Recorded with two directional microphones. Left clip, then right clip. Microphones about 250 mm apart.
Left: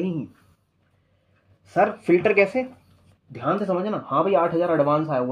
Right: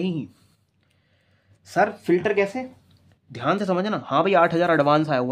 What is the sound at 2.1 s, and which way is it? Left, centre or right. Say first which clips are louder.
Speech: left 3 dB; centre.